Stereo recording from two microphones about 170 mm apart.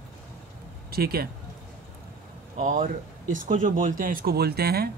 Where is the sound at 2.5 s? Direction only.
50° right (ahead or behind); by 4.8 s 65° right (ahead or behind).